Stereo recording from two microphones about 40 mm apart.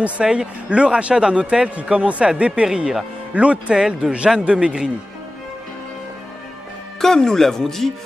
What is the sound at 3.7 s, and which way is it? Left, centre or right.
Speech, centre.